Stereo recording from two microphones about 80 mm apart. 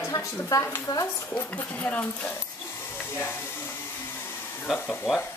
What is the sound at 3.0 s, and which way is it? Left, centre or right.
Hiss, left.